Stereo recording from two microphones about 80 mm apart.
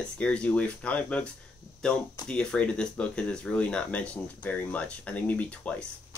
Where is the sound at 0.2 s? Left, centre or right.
Centre.